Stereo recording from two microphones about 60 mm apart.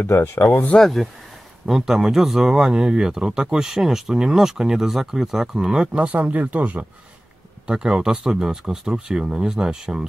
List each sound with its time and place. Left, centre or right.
0.0 s speech: left
0.7 s speech: centre
1.7 s speech: centre
5.9 s speech: right
7.6 s speech: centre